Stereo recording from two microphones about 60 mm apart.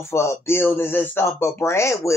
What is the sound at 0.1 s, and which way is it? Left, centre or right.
Speech, left.